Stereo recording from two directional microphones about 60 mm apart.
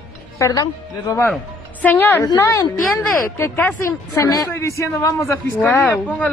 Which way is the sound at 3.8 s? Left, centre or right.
Left.